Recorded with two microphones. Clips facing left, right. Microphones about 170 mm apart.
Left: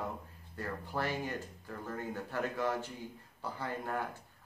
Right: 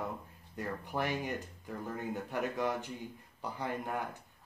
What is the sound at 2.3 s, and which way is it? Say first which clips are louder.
Speech: even; 15° right (ahead or behind).